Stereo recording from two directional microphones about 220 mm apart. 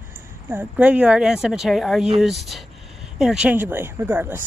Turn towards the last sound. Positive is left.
turn(degrees=-10)  # may be behind; listen again after turning